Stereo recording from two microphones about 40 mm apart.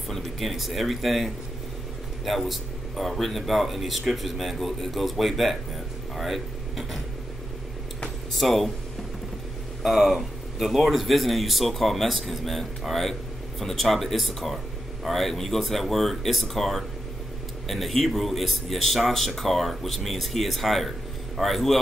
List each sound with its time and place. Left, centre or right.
0.2 s speech: centre
8.4 s speech: centre
9.8 s speech: centre